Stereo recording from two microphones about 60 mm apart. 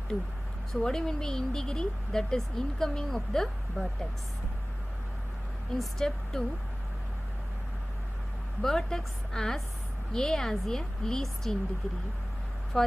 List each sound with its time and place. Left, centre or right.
0.7 s speech: centre
5.8 s speech: centre
8.6 s speech: centre
12.7 s speech: centre